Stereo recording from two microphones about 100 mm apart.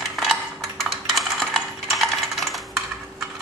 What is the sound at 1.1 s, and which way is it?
Coin, centre (ahead or behind).